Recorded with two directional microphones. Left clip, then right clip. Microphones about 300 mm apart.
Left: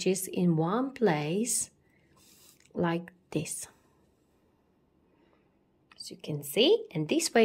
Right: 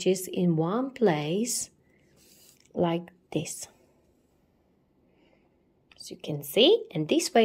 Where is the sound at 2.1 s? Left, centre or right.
Centre.